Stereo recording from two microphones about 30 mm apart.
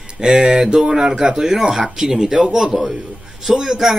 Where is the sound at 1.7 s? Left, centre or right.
Centre.